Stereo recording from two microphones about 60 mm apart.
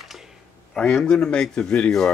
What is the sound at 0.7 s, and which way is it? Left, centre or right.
Speech, centre.